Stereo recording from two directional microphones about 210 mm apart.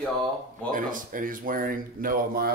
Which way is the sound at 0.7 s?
40° right (ahead or behind).